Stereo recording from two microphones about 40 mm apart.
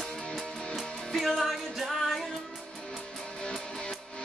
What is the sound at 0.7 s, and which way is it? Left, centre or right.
Music, centre.